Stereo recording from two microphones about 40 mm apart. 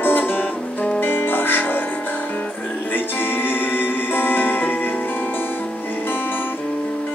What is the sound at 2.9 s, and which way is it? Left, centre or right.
Music, left.